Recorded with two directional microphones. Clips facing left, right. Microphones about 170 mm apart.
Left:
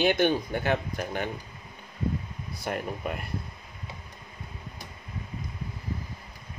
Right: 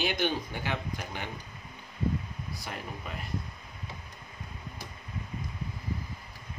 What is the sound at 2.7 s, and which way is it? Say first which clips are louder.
Speech: left 10 dB; 60° left (ahead or behind).